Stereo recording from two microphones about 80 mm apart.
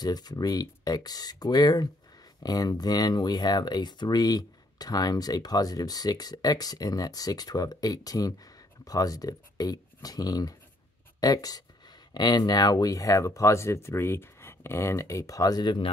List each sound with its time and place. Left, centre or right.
0.0 s speech: left